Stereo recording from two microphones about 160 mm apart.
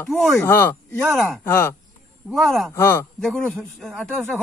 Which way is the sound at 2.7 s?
15° left (ahead or behind).